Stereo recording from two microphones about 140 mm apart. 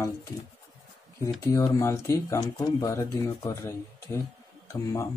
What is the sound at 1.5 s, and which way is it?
Speech, 20° left (ahead or behind).